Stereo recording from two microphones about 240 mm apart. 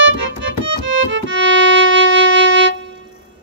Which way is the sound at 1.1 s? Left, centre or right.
Right.